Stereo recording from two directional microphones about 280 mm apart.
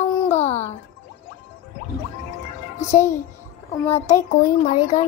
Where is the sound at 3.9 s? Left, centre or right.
Left.